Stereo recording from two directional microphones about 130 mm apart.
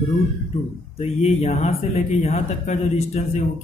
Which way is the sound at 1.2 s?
50° left (ahead or behind).